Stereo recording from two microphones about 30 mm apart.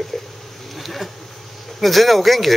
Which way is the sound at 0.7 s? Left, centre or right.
Centre.